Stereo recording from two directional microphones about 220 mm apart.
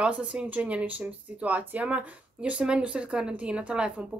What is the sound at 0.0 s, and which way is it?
Speech, 5° right (ahead or behind).